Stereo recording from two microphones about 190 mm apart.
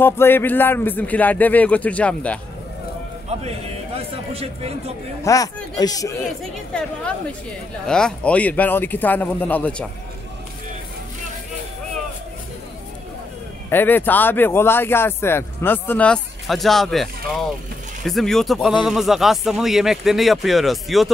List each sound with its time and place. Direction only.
0.0 s speech: 10° left (ahead or behind)
3.3 s a man's voice: 30° right (ahead or behind)
5.2 s a man's voice: 20° left (ahead or behind)
7.8 s speech: 5° left (ahead or behind)
13.7 s speech: 10° left (ahead or behind)